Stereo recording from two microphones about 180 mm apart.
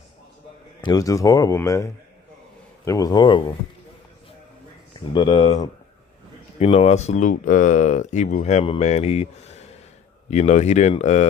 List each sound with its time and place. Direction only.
0.8 s speech: 20° left (ahead or behind)
5.1 s speech: 25° left (ahead or behind)